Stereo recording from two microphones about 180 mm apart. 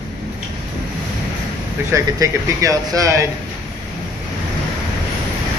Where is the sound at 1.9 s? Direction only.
20° right (ahead or behind).